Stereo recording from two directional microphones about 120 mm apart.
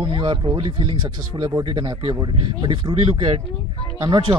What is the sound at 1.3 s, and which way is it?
Speech, 30° right (ahead or behind).